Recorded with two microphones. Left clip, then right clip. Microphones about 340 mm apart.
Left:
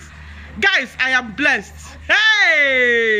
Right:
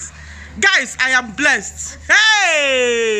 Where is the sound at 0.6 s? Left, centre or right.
Centre.